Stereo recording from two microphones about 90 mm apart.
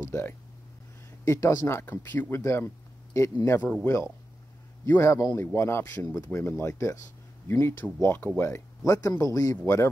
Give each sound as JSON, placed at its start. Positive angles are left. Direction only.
{"t": 0.1, "sound": "speech", "side_deg": 25}
{"t": 4.8, "sound": "speech", "side_deg": 30}
{"t": 5.9, "sound": "speech", "side_deg": 40}
{"t": 6.2, "sound": "speech", "side_deg": 25}